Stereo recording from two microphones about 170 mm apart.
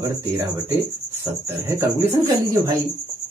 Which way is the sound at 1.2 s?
15° right (ahead or behind).